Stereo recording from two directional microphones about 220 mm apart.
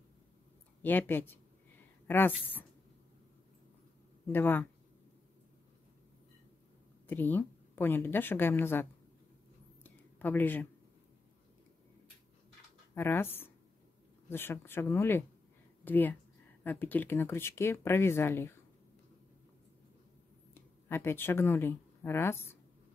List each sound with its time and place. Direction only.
0.8 s speech: 10° left (ahead or behind)
4.3 s speech: 10° left (ahead or behind)
7.1 s speech: 10° left (ahead or behind)
9.8 s a sound: 10° left (ahead or behind)
12.9 s speech: 10° left (ahead or behind)
20.5 s speech: 10° left (ahead or behind)